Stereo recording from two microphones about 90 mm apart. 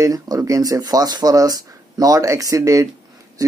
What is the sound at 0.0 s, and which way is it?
Speech, 45° right (ahead or behind).